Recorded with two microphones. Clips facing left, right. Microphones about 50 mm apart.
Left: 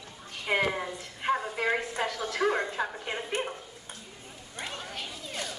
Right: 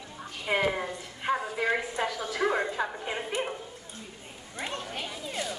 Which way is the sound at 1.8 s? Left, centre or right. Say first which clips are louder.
Right 1 dB; centre.